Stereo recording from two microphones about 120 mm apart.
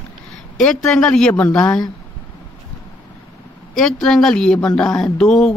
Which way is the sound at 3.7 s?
5° left (ahead or behind).